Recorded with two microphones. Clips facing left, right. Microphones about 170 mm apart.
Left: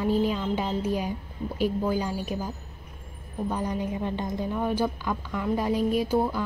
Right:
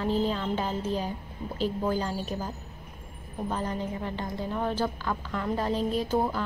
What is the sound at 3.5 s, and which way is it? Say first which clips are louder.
Speech: left 2 dB; 15° left (ahead or behind).